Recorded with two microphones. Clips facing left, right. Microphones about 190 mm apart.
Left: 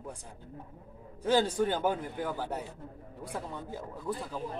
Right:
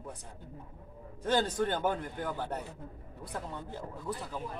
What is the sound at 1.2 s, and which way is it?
A man's voice, 10° left (ahead or behind).